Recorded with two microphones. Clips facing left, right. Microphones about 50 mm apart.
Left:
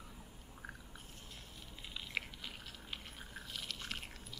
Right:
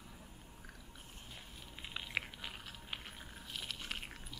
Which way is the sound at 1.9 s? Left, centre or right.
Centre.